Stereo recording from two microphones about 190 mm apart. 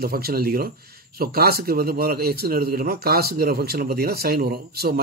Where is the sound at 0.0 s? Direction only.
55° right (ahead or behind).